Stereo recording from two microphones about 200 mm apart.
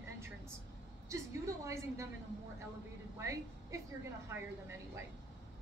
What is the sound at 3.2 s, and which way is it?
Speech, 15° right (ahead or behind).